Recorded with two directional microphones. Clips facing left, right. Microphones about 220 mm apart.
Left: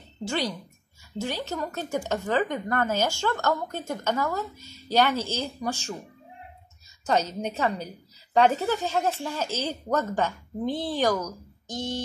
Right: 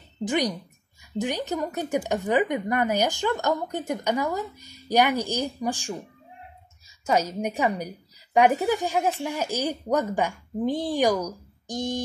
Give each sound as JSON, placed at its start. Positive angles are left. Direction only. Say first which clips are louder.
{"t": 0.2, "sound": "a woman's voice", "louder": "right 4 dB", "side_deg": -15}
{"t": 7.1, "sound": "a woman's voice", "louder": "right 2 dB", "side_deg": -10}